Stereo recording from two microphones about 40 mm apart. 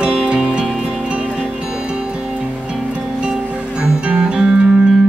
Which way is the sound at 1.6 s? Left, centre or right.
Right.